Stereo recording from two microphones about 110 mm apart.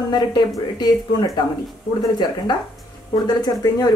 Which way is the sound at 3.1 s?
35° left (ahead or behind).